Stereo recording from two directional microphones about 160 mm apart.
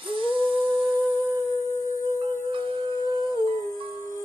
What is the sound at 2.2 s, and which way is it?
Music, 35° right (ahead or behind).